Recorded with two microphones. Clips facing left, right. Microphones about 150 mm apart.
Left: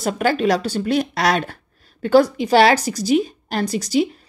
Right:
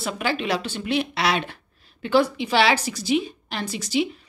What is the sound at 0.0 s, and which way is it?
A woman's voice, 45° left (ahead or behind).